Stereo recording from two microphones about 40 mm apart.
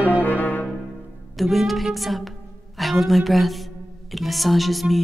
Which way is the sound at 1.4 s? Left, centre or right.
Centre.